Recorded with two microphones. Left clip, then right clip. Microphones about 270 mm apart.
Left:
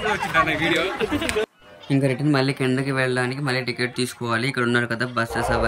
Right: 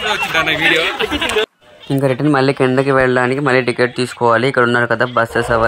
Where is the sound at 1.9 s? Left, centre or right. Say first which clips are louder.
Right 6 dB; centre.